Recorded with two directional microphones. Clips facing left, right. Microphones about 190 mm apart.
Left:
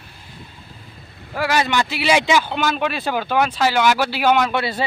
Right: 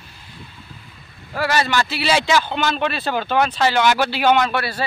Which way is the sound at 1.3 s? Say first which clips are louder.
Even; 10° left (ahead or behind).